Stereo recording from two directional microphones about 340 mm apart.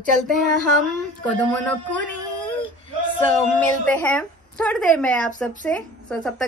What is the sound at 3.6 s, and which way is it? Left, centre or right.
Speech, centre.